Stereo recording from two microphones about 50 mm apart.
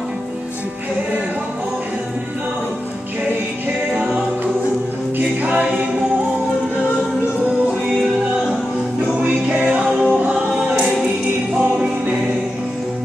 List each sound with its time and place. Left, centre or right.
3.9 s music: right
5.4 s a capella: right
9.5 s music: right